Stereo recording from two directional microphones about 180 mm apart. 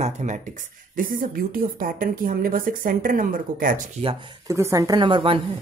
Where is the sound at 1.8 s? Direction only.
50° right (ahead or behind).